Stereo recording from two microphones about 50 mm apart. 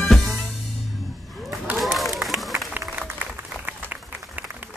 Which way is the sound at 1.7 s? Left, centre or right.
Centre.